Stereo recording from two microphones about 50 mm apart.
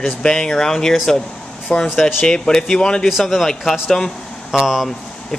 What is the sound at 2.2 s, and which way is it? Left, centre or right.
Speech, centre.